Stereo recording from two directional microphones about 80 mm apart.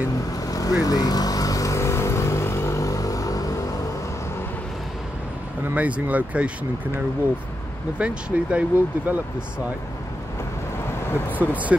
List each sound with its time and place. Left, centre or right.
0.5 s vehicle: left
5.6 s speech: centre
8.0 s speech: centre
11.3 s speech: centre